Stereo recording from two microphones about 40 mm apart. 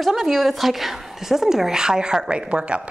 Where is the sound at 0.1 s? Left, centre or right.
Centre.